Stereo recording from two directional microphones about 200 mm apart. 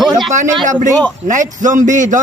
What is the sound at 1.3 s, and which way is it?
Speech, 40° right (ahead or behind).